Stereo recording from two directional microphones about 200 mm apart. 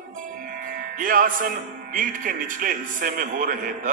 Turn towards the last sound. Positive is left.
turn(degrees=-40)  # may be behind; listen again after turning